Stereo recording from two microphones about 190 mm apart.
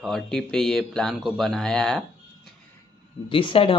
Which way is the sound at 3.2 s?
25° left (ahead or behind).